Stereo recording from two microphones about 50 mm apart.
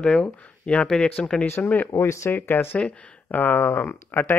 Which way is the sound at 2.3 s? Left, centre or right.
Left.